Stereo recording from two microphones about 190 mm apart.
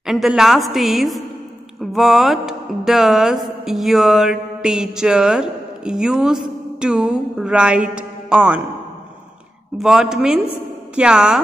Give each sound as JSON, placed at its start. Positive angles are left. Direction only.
{"t": 0.0, "sound": "music", "side_deg": 0}
{"t": 9.8, "sound": "music", "side_deg": 0}